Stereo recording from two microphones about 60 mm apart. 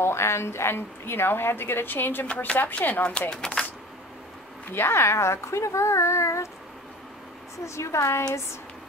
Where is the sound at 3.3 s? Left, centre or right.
Centre.